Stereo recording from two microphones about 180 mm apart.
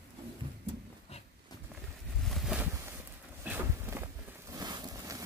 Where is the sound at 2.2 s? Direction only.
Centre (ahead or behind).